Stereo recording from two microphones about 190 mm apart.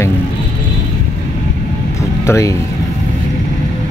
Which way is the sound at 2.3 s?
15° left (ahead or behind).